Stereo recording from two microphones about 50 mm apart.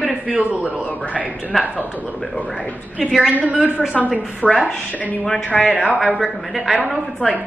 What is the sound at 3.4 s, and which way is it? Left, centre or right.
Speech, right.